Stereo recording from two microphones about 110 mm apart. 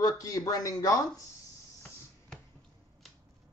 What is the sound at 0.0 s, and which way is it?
Speech, 30° left (ahead or behind).